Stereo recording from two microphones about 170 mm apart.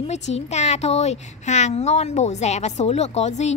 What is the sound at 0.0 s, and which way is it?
Speech, 40° left (ahead or behind).